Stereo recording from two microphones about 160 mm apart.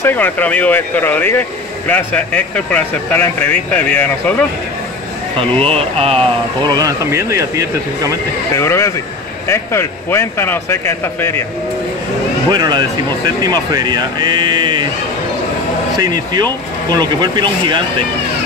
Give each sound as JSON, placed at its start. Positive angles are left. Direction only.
{"t": 0.0, "sound": "speech", "side_deg": 10}
{"t": 5.5, "sound": "speech", "side_deg": 5}
{"t": 5.8, "sound": "speech", "side_deg": -40}
{"t": 6.6, "sound": "speech", "side_deg": -25}
{"t": 8.5, "sound": "speech", "side_deg": 15}
{"t": 12.4, "sound": "speech", "side_deg": -25}
{"t": 16.0, "sound": "speech", "side_deg": -25}